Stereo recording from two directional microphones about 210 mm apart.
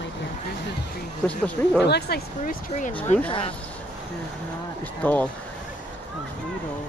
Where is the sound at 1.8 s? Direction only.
50° left (ahead or behind).